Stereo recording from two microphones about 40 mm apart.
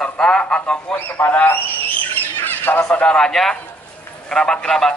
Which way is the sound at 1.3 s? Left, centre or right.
Left.